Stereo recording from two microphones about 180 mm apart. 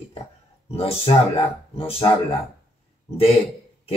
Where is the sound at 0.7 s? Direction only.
35° left (ahead or behind).